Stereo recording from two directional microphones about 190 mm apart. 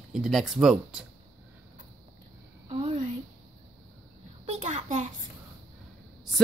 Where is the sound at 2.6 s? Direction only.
30° right (ahead or behind).